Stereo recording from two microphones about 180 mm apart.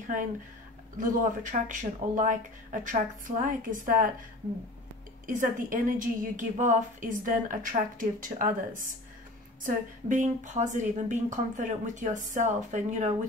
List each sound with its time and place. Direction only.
0.9 s a woman's voice: 45° right (ahead or behind)
5.2 s a woman's voice: 50° right (ahead or behind)